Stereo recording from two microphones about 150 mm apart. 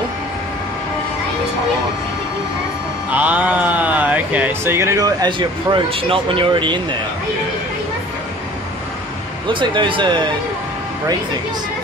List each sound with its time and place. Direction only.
3.1 s speech: 10° right (ahead or behind); by 7.0 s 30° right (ahead or behind)
9.5 s speech: 35° right (ahead or behind)